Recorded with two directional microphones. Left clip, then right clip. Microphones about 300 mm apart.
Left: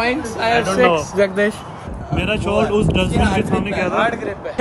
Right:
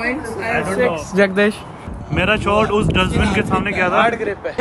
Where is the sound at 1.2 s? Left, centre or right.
Centre.